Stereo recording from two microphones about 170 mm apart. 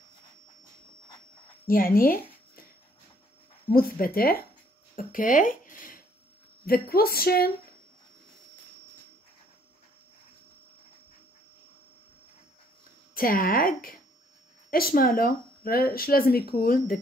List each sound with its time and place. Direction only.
2.0 s a sound: 60° left (ahead or behind)
3.7 s speech: 60° left (ahead or behind)
13.1 s speech: 60° left (ahead or behind)